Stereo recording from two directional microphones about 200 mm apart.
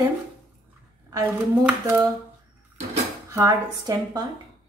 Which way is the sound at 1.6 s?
10° right (ahead or behind).